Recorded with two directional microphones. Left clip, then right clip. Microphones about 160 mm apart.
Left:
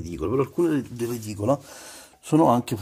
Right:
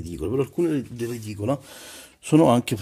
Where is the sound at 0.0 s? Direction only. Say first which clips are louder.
Left 1 dB; 35° right (ahead or behind).